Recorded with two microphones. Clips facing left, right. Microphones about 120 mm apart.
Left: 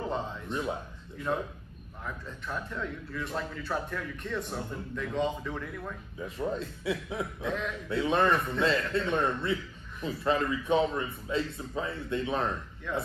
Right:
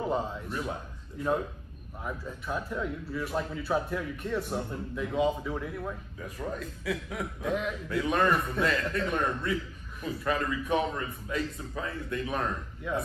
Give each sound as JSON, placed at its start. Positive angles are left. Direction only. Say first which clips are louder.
{"t": 0.5, "sound": "a man's voice", "louder": "left 2 dB", "side_deg": 25}
{"t": 2.0, "sound": "a man's voice", "louder": "right 3 dB", "side_deg": -10}
{"t": 6.2, "sound": "a man's voice", "louder": "left 3 dB", "side_deg": 25}
{"t": 7.4, "sound": "a man's voice", "louder": "right 4 dB", "side_deg": -10}
{"t": 7.9, "sound": "a man's voice", "louder": "left 1 dB", "side_deg": 25}
{"t": 12.9, "sound": "a man's voice", "louder": "right 1 dB", "side_deg": -10}